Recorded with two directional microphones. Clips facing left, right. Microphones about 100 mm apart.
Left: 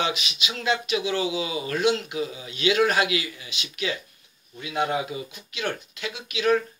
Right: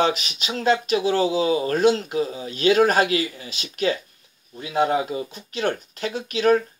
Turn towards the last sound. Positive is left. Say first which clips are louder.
# right 4 dB
turn(degrees=-40)  # may be behind; listen again after turning